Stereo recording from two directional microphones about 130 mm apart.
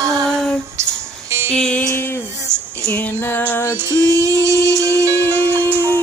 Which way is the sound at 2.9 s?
15° left (ahead or behind).